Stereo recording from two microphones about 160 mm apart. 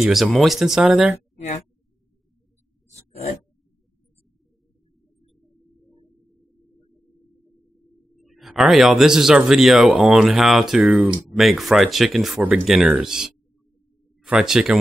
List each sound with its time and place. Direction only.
0.0 s speech: centre (ahead or behind)
8.2 s speech: centre (ahead or behind)